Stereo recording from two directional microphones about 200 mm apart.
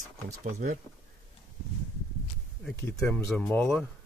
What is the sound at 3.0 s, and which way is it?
Speech, 5° left (ahead or behind).